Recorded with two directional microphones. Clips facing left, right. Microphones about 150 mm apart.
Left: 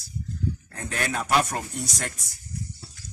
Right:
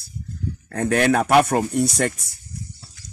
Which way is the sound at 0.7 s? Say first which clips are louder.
Right 18 dB; 80° right.